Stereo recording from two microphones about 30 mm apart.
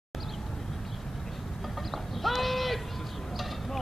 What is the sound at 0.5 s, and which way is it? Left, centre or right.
Vehicle, centre.